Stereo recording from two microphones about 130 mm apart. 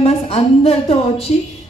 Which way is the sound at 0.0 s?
50° left (ahead or behind).